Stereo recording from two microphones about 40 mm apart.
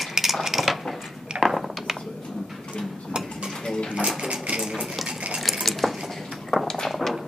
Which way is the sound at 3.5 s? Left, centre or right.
Centre.